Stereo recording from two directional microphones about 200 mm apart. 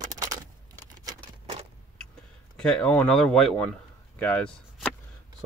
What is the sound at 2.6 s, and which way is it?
Speech, 5° left (ahead or behind).